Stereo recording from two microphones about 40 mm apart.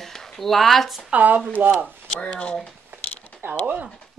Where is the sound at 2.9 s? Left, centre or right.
Right.